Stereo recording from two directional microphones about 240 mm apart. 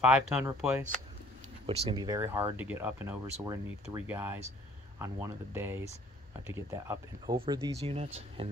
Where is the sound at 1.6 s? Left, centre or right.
Right.